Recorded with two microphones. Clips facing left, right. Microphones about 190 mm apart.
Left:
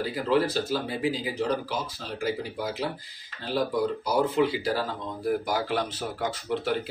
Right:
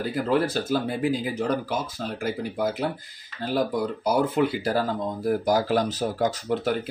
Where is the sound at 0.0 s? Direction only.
50° right (ahead or behind).